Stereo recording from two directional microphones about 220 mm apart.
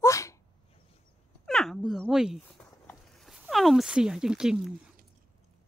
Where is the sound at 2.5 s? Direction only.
15° left (ahead or behind).